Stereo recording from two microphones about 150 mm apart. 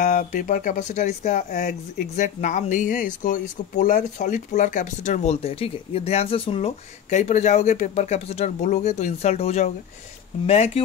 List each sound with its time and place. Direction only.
0.0 s speech: 65° left (ahead or behind); by 6.7 s 40° left (ahead or behind)
7.1 s speech: 50° left (ahead or behind)